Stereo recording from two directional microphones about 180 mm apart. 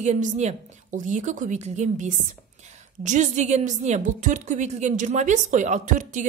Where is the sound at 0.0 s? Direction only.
40° right (ahead or behind).